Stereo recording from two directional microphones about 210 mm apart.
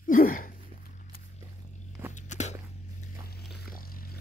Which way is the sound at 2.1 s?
35° left (ahead or behind).